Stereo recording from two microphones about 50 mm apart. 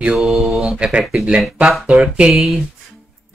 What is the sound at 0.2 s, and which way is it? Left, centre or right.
Mantra, centre.